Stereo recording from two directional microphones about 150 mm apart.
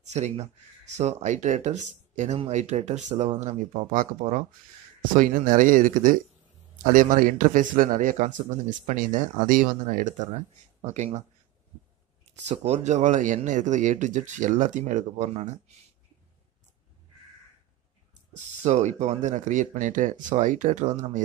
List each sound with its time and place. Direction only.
0.1 s a man's voice: 50° right (ahead or behind)
12.4 s speech: 50° right (ahead or behind)
18.6 s a man's voice: 50° right (ahead or behind)